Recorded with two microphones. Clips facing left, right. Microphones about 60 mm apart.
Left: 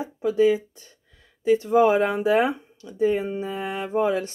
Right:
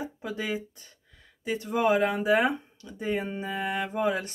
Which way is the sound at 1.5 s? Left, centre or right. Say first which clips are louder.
Left 7 dB; left.